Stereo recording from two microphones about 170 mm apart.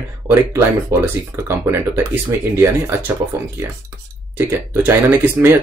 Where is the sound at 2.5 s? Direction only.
15° right (ahead or behind).